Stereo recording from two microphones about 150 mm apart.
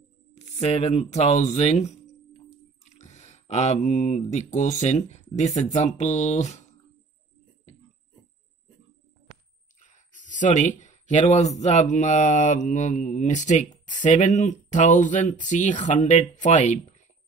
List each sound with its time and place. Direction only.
0.3 s speech: 45° left (ahead or behind)
9.8 s a sound: 55° left (ahead or behind)
11.6 s speech: 55° left (ahead or behind)